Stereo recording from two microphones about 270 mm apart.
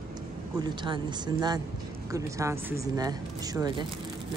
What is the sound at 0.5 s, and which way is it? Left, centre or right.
Speech, centre.